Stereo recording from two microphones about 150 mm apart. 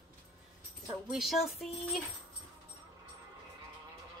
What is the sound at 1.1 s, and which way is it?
Speech, 5° right (ahead or behind).